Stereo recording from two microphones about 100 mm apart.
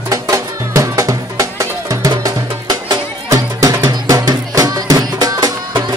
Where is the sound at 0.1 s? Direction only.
30° right (ahead or behind).